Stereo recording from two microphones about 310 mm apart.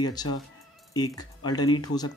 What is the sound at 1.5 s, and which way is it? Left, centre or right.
Speech, centre.